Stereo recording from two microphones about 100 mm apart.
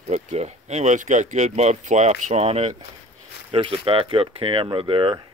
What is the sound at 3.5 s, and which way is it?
Speech, 60° right (ahead or behind).